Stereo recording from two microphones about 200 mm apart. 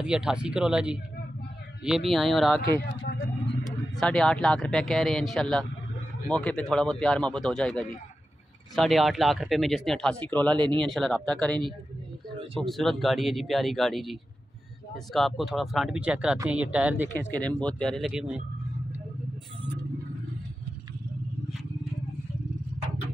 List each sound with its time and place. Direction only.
0.0 s speech: 5° right (ahead or behind)
2.8 s speech: 55° left (ahead or behind)
3.9 s speech: centre (ahead or behind)
12.6 s speech: centre (ahead or behind)
15.1 s speech: centre (ahead or behind)
17.2 s speech: 5° left (ahead or behind)